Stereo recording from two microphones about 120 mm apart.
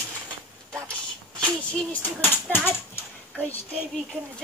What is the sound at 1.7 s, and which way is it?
Speech, 15° left (ahead or behind).